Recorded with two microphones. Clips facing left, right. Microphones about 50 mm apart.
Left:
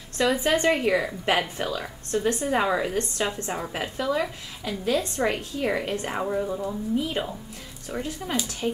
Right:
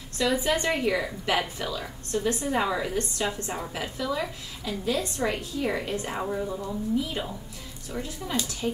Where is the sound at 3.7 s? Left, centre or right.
Left.